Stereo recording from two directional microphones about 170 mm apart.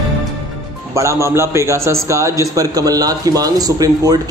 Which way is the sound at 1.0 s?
15° right (ahead or behind).